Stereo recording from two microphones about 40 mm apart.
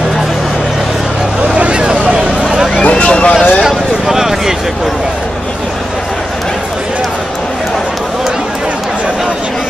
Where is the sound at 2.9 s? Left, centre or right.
Left.